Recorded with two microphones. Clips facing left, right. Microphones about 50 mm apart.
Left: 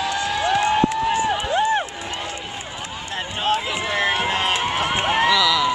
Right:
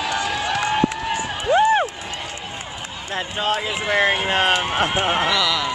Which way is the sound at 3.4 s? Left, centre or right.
Centre.